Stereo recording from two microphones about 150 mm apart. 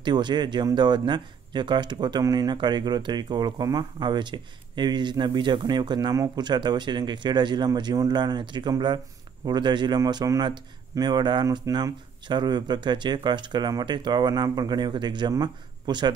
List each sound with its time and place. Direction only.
0.0 s speech: 30° right (ahead or behind)